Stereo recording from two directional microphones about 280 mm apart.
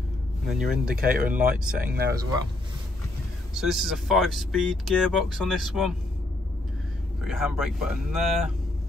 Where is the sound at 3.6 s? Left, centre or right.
Centre.